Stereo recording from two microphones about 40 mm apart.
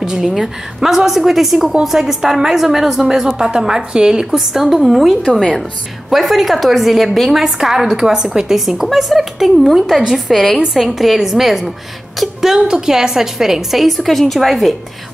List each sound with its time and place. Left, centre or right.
0.0 s a sound: centre
0.4 s a woman's voice: centre
4.3 s a woman's voice: centre
10.3 s a woman's voice: centre
10.7 s a woman's voice: centre